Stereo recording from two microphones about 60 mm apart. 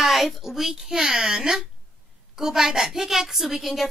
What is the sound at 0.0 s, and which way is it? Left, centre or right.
A woman's voice, centre.